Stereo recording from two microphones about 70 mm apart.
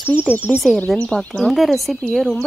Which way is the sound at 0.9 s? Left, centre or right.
Centre.